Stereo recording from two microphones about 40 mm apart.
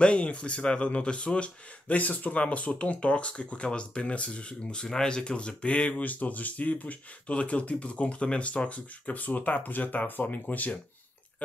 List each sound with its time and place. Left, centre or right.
0.0 s speech: left